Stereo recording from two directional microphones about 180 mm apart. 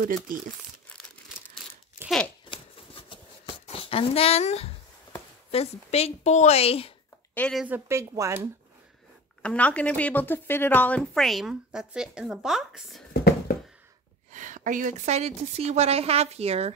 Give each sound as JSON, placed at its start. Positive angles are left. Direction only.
{"t": 0.3, "sound": "speech", "side_deg": -50}
{"t": 2.0, "sound": "a sound", "side_deg": 5}
{"t": 2.5, "sound": "a sound", "side_deg": 30}
{"t": 5.5, "sound": "a woman's voice", "side_deg": 35}
{"t": 7.3, "sound": "a woman's voice", "side_deg": 5}
{"t": 7.6, "sound": "a woman's voice", "side_deg": -15}
{"t": 9.4, "sound": "a woman's voice", "side_deg": 5}
{"t": 13.5, "sound": "a sound", "side_deg": 55}
{"t": 14.3, "sound": "a woman's voice", "side_deg": -45}